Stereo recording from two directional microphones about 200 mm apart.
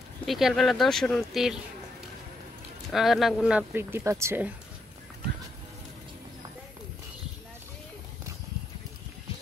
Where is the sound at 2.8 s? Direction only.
Centre (ahead or behind).